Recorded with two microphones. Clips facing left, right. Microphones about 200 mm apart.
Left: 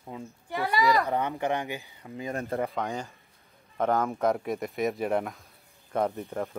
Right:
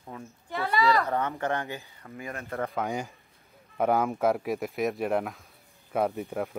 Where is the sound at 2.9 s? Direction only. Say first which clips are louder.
Right 2 dB; 10° right (ahead or behind).